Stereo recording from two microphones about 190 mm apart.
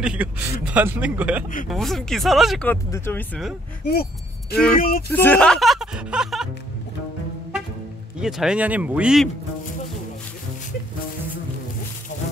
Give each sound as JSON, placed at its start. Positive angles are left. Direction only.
{"t": 0.0, "sound": "a man's voice", "side_deg": -5}
{"t": 2.7, "sound": "speech", "side_deg": 10}
{"t": 3.8, "sound": "a sound", "side_deg": 55}
{"t": 4.7, "sound": "speech", "side_deg": 50}
{"t": 5.1, "sound": "speech", "side_deg": 10}
{"t": 8.2, "sound": "speech", "side_deg": -5}